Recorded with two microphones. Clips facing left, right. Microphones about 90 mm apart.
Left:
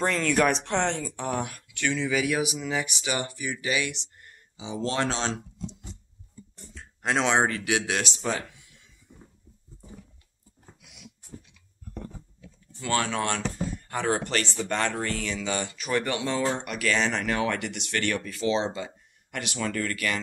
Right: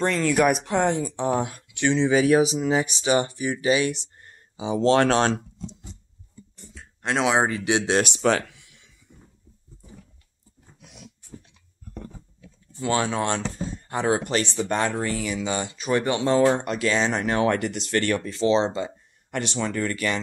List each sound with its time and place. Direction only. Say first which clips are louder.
0.0 s speech: right 3 dB; centre (ahead or behind); by 4.4 s 35° right (ahead or behind)
4.6 s speech: right 9 dB; 65° right (ahead or behind)
6.7 s a sound: right 1 dB; centre (ahead or behind)
7.5 s speech: right 5 dB; 25° right (ahead or behind)
8.0 s speech: right 8 dB; 70° right (ahead or behind); by 8.8 s 85° right
10.8 s dog: right 7 dB; 35° right (ahead or behind)
12.7 s speech: right 3 dB; 20° right (ahead or behind)
16.3 s speech: right 8 dB; 40° right (ahead or behind)
16.7 s speech: right 3 dB; 20° right (ahead or behind)